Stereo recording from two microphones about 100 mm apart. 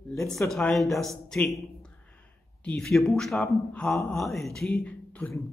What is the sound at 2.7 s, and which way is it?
A man's voice, 5° left (ahead or behind).